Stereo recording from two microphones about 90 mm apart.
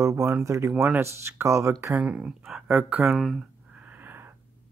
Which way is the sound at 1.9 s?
15° right (ahead or behind).